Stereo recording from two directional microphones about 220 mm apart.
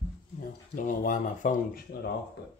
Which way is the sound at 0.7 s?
40° left (ahead or behind).